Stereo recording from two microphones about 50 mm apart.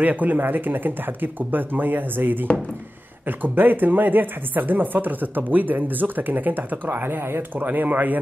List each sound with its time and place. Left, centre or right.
0.0 s speech: right
7.5 s speech: right